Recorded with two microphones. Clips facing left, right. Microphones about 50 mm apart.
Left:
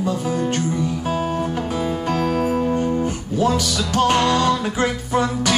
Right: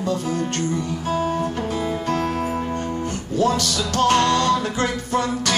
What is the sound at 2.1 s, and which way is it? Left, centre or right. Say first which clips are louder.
Music: left 4 dB; centre.